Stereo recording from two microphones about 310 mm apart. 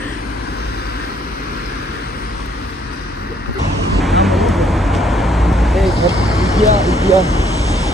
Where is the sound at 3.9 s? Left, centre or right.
Centre.